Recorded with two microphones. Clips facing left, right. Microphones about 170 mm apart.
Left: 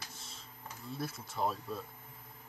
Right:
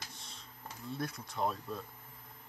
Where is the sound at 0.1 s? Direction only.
Centre (ahead or behind).